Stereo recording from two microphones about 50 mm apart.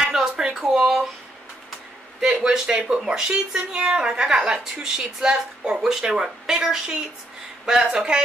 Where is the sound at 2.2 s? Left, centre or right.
Centre.